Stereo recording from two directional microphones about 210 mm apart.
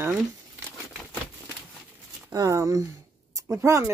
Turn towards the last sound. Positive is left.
turn(degrees=-15)  # may be behind; listen again after turning